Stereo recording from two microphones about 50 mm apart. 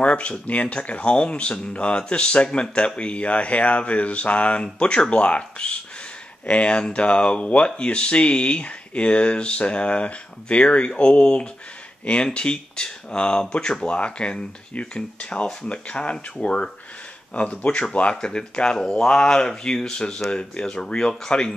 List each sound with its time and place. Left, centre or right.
0.0 s speech: left